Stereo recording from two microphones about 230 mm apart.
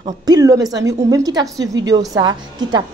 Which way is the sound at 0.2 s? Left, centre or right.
Centre.